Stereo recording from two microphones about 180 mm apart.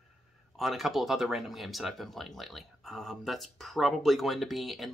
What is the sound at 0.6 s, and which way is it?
Speech, centre (ahead or behind).